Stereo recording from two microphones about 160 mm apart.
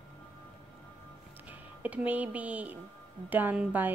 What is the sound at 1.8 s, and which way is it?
Speech, 10° right (ahead or behind).